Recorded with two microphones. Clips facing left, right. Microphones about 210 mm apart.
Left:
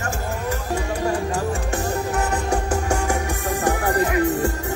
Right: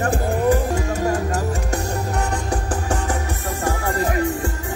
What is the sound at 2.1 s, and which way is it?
Music, 10° left (ahead or behind).